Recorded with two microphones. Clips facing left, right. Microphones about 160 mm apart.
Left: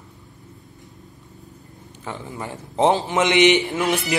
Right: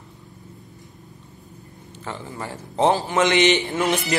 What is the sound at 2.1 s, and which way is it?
A man's voice, 15° left (ahead or behind).